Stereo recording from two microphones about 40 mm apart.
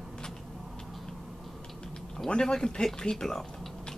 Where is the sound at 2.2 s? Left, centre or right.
Centre.